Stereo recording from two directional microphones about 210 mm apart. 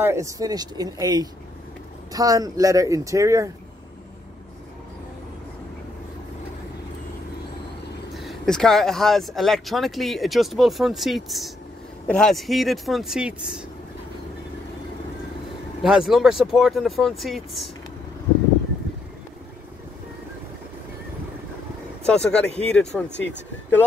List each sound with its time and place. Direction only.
0.0 s speech: 15° right (ahead or behind)
8.1 s speech: centre (ahead or behind)
15.8 s speech: centre (ahead or behind)
22.0 s speech: 5° left (ahead or behind)